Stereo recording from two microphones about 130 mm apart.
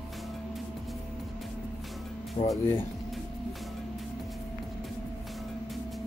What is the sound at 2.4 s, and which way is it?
Speech, 40° left (ahead or behind).